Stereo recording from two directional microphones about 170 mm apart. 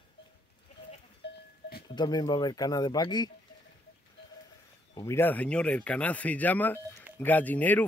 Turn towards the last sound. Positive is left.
turn(degrees=10)  # may be behind; listen again after turning